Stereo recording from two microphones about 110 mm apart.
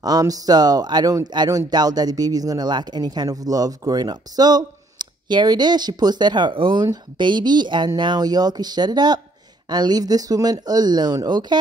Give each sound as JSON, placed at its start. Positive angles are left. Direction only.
{"t": 0.0, "sound": "speech", "side_deg": -35}